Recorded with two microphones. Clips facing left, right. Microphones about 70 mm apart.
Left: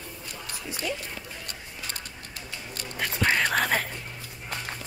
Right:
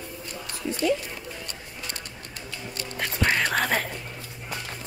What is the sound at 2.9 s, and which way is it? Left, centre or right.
Music, centre.